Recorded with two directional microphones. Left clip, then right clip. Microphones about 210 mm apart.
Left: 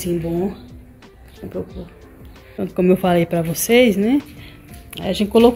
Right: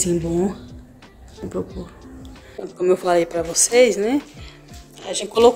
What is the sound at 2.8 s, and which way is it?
Speech, 10° right (ahead or behind).